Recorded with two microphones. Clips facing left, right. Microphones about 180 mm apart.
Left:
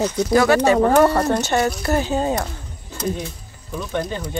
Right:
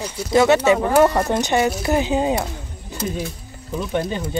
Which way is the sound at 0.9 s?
10° right (ahead or behind).